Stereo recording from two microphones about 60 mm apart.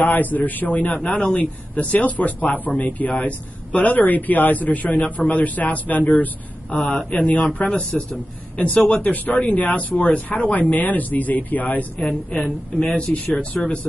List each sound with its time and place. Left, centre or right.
0.0 s speech: left